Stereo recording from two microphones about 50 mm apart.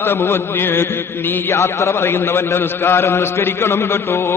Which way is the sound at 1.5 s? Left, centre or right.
Left.